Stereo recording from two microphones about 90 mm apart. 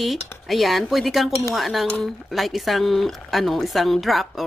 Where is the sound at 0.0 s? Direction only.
Centre (ahead or behind).